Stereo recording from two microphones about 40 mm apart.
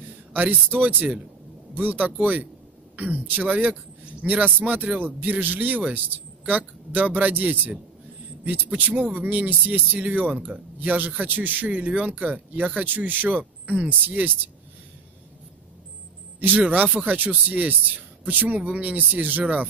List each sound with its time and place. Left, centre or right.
0.3 s speech: right
11.7 s speech: right
16.3 s speech: right